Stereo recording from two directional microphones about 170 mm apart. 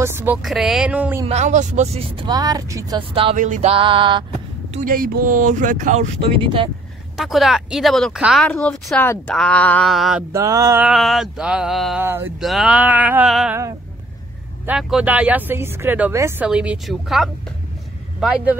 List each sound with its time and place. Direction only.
0.0 s speech: 15° right (ahead or behind)
0.4 s speech: centre (ahead or behind)
1.2 s speech: 40° right (ahead or behind)
3.3 s speech: 45° right (ahead or behind)
3.7 s mantra: 30° right (ahead or behind)
4.7 s speech: 55° right (ahead or behind); by 6.7 s 30° right (ahead or behind)
7.2 s speech: centre (ahead or behind)
10.3 s mantra: 20° right (ahead or behind)
10.8 s speech: centre (ahead or behind)
12.0 s speech: 10° right (ahead or behind)
12.4 s speech: centre (ahead or behind)
14.7 s speech: 5° right (ahead or behind)